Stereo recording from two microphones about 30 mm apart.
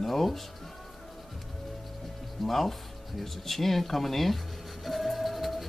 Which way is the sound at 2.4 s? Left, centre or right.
Centre.